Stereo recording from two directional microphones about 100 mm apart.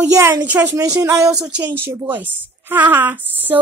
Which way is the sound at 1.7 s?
20° right (ahead or behind).